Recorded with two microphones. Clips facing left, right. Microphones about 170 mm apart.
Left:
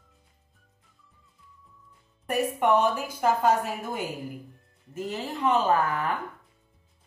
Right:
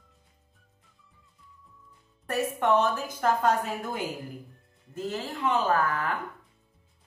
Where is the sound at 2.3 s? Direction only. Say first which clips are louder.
Left 1 dB; 10° left (ahead or behind).